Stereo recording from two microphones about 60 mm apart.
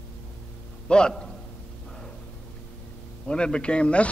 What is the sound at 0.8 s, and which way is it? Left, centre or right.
Speech, centre.